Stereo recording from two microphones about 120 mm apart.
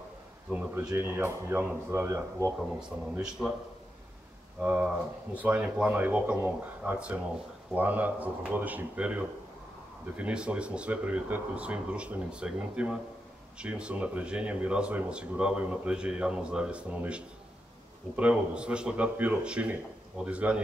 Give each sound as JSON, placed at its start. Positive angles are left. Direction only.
{"t": 0.5, "sound": "speech", "side_deg": -10}
{"t": 3.2, "sound": "a man's voice", "side_deg": -5}
{"t": 4.6, "sound": "speech", "side_deg": -10}